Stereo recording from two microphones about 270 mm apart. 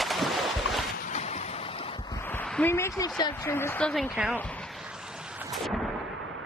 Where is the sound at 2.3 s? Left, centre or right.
Centre.